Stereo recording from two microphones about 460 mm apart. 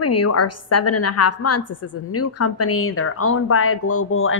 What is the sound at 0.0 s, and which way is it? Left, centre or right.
A woman's voice, left.